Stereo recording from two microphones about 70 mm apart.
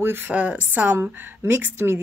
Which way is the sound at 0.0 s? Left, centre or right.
Right.